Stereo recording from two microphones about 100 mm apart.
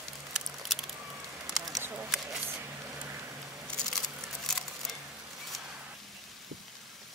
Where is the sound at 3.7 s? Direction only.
5° left (ahead or behind).